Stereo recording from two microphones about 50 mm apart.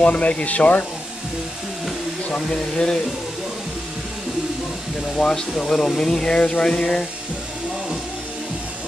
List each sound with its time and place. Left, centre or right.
0.0 s speech: left
2.2 s speech: centre
5.1 s speech: centre